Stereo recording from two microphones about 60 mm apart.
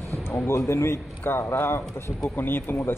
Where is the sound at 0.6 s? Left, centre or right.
Left.